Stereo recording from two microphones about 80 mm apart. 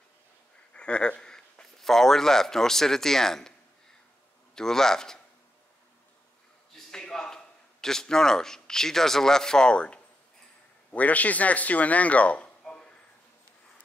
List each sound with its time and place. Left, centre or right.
0.7 s speech: centre
4.6 s a man's voice: centre
6.9 s a man's voice: centre